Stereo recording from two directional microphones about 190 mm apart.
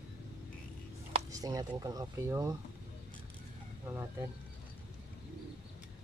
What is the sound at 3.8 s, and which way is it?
Speech, 15° right (ahead or behind).